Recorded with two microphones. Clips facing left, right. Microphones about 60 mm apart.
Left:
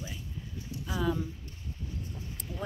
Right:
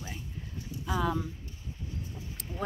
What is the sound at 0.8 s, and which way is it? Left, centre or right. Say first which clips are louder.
Speech: right 1 dB; right.